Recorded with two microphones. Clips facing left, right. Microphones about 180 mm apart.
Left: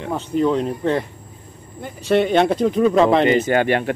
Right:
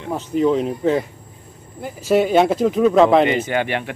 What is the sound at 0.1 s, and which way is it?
A man's voice, 5° right (ahead or behind).